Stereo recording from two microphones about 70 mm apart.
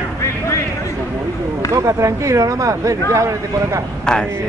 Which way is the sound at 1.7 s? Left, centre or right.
Right.